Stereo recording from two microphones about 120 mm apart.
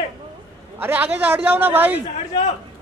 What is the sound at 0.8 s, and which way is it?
A man's voice, 15° right (ahead or behind).